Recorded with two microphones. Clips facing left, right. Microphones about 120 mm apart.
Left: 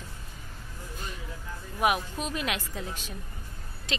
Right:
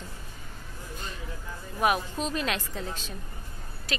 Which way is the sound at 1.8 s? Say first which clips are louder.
Right 1 dB; 15° left (ahead or behind).